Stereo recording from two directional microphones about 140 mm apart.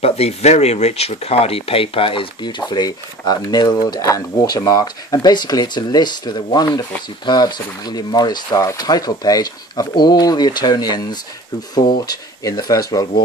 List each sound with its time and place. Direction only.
0.0 s speech: 45° left (ahead or behind); by 13.1 s 25° left (ahead or behind)